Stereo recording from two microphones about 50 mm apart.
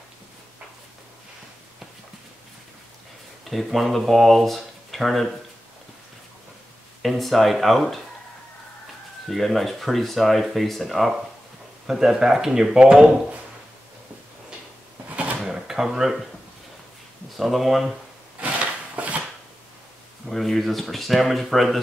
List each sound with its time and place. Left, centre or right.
3.4 s speech: centre
7.0 s speech: centre
9.3 s speech: centre
15.0 s a sound: right
15.4 s drawer open or close: centre
17.4 s speech: centre
18.4 s wood: right
20.2 s speech: centre